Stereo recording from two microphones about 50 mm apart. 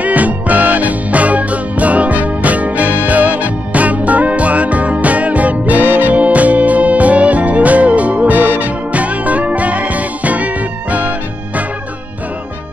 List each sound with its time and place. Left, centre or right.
0.0 s music: right